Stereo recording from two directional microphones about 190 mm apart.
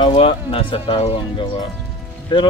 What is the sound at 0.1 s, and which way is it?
Speech, 30° left (ahead or behind).